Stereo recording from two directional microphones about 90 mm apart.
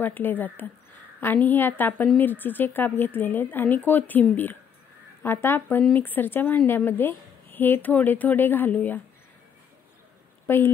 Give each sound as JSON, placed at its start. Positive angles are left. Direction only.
{"t": 0.0, "sound": "a woman's voice", "side_deg": 20}
{"t": 10.4, "sound": "speech", "side_deg": 25}